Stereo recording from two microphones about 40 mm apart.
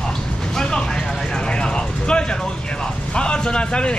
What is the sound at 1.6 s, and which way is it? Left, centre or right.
Speech, left.